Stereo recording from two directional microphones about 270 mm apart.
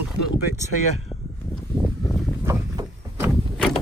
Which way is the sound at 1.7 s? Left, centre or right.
Centre.